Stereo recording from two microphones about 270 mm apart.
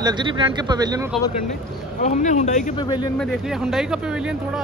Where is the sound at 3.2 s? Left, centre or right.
Centre.